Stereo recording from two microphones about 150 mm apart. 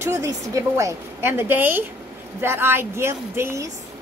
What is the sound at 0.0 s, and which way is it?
Speech, 20° right (ahead or behind).